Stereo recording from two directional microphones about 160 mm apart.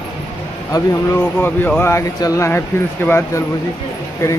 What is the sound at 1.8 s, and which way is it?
Speech, 20° left (ahead or behind).